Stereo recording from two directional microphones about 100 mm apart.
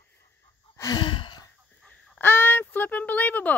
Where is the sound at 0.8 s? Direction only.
45° left (ahead or behind).